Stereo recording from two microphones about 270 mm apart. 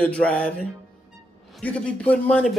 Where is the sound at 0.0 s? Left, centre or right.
Centre.